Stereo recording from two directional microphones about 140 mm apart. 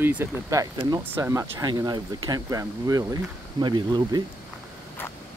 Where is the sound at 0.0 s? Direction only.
15° right (ahead or behind); by 4.2 s 30° right (ahead or behind).